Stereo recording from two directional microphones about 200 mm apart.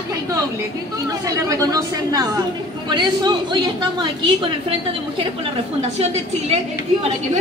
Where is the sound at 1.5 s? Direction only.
15° right (ahead or behind).